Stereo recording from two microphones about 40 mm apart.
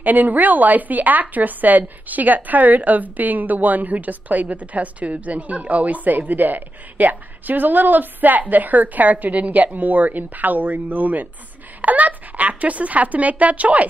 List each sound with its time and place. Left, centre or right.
0.0 s a woman's voice: right